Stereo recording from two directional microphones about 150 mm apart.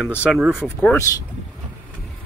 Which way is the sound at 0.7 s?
15° left (ahead or behind).